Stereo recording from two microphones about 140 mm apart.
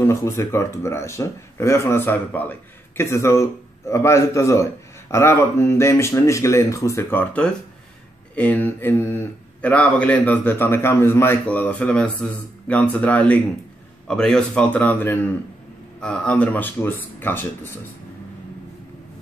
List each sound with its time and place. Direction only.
0.0 s speech: 20° left (ahead or behind)